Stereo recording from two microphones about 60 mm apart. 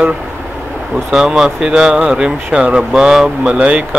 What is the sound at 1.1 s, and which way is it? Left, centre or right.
Speech, centre.